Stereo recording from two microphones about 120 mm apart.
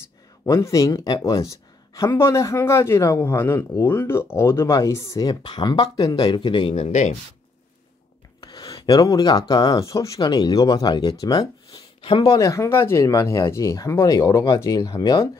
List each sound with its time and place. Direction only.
0.5 s speech: 25° left (ahead or behind)
6.7 s speech: 70° left (ahead or behind)
8.4 s speech: 35° left (ahead or behind)
12.4 s speech: 25° left (ahead or behind)